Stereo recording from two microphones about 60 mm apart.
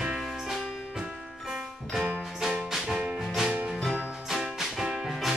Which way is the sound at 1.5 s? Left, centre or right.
Centre.